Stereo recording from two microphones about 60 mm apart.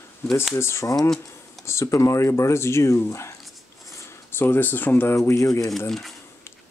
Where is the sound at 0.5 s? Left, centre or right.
Left.